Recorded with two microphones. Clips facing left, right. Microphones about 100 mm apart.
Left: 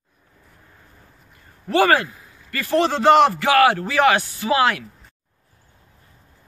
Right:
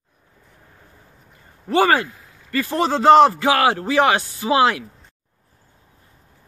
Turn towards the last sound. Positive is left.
turn(degrees=-25)  # may be behind; listen again after turning